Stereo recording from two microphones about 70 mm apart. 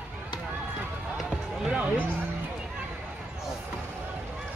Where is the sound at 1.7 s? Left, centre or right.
Centre.